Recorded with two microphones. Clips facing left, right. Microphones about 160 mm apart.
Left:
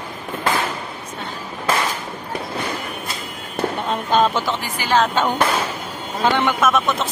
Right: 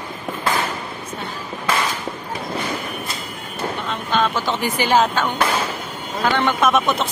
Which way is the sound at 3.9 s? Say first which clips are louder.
Left 3 dB; 40° left (ahead or behind).